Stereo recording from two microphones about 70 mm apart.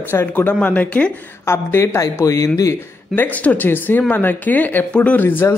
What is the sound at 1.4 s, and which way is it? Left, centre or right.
Speech, left.